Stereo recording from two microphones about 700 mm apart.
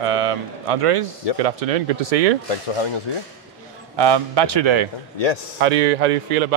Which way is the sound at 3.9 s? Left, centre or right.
Right.